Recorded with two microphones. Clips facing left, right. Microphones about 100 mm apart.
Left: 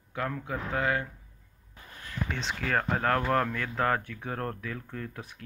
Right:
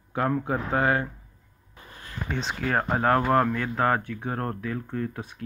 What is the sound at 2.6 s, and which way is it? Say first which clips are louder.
Speech: right 4 dB; 20° right (ahead or behind).